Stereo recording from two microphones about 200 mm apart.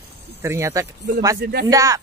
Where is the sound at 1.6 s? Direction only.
15° right (ahead or behind).